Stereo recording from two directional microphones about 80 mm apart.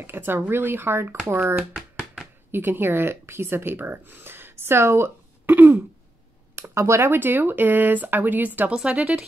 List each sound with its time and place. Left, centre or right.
0.0 s speech: right
1.4 s speech: centre
2.5 s speech: right
6.5 s speech: right; by 9.2 s centre